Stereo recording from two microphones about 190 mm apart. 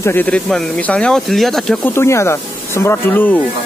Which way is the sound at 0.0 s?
10° left (ahead or behind).